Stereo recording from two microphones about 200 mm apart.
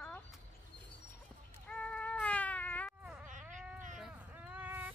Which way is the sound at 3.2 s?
40° right (ahead or behind).